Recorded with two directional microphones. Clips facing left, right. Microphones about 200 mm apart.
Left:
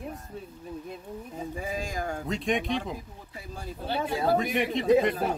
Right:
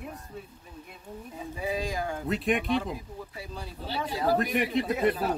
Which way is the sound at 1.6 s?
45° left (ahead or behind).